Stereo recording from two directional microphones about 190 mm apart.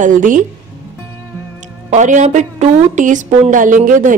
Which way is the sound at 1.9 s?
40° right (ahead or behind).